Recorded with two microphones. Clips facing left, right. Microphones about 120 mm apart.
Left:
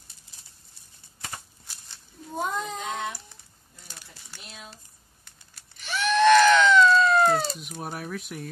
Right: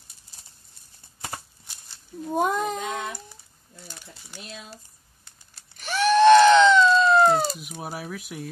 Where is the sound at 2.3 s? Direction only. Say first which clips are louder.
Right 6 dB; 60° right (ahead or behind).